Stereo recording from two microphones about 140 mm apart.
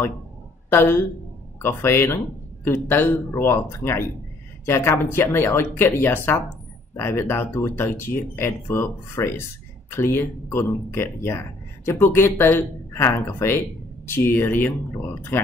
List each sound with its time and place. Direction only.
0.7 s speech: 15° left (ahead or behind)